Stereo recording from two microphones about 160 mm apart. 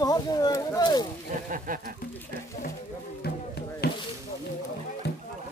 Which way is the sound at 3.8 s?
90° left.